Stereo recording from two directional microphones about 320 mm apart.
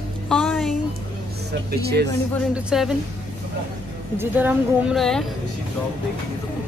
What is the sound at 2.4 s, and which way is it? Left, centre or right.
Speech, centre.